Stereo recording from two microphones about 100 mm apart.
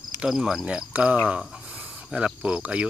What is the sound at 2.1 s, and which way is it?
Speech, 10° right (ahead or behind).